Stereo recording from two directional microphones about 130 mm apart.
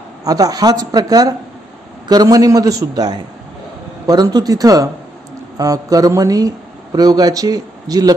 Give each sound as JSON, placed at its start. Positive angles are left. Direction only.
{"t": 0.2, "sound": "a man's voice", "side_deg": -30}